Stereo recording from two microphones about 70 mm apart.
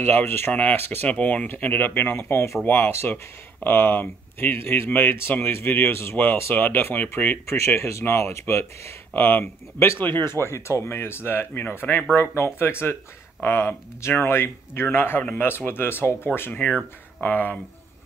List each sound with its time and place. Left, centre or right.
0.0 s speech: left
2.6 s speech: left
7.4 s speech: left
9.1 s speech: left
16.5 s speech: left